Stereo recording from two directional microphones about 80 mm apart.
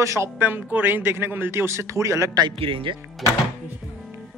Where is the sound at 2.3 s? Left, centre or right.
Right.